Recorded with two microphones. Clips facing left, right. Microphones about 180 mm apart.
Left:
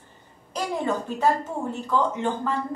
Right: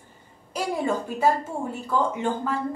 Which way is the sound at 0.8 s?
10° right (ahead or behind).